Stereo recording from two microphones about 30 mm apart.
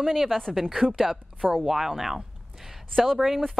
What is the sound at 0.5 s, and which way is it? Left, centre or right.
Speech, centre.